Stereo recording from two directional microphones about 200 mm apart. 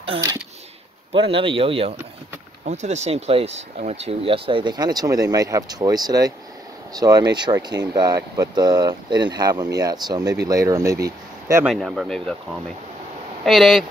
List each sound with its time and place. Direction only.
0.0 s speech: 25° right (ahead or behind)
11.1 s a sound: 15° right (ahead or behind)
11.6 s speech: centre (ahead or behind)
13.5 s speech: centre (ahead or behind)